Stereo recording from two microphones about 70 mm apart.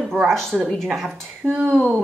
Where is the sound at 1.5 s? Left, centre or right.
Right.